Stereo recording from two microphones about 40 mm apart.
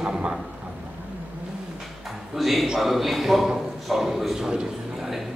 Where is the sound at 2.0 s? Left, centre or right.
Centre.